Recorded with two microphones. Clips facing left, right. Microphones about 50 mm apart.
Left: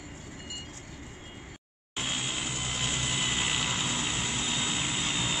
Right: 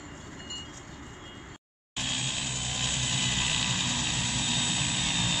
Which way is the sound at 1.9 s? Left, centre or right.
Centre.